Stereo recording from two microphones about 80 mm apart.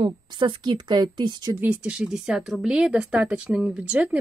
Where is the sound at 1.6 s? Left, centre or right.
Centre.